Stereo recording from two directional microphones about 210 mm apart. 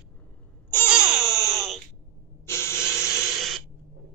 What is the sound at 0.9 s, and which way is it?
Baby cry, 5° right (ahead or behind).